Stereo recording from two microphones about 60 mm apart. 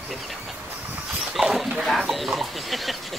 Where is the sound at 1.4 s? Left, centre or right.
Centre.